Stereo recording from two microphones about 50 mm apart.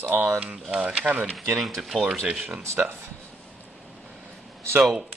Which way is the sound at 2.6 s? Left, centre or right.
Right.